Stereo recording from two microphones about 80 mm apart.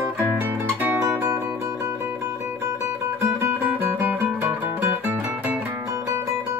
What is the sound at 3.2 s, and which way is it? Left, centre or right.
Music, right.